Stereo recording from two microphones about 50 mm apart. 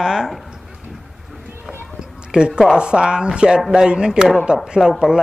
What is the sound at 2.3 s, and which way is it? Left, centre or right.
A man's voice, centre.